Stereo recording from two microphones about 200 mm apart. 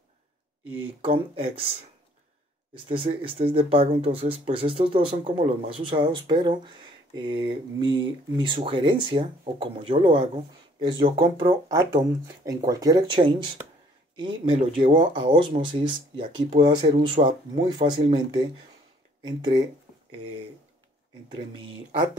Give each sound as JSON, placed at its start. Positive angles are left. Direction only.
{"t": 1.0, "sound": "speech", "side_deg": -30}
{"t": 2.9, "sound": "speech", "side_deg": -25}